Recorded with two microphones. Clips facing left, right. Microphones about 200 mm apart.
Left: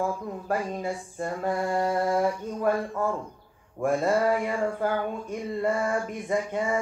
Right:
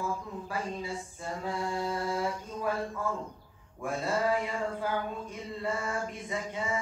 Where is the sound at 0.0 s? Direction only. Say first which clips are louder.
Left 6 dB; 55° left (ahead or behind).